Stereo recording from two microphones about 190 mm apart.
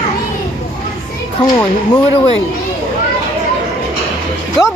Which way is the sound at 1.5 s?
25° left (ahead or behind).